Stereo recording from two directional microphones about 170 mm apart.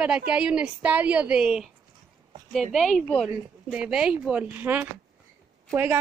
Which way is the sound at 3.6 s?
5° right (ahead or behind).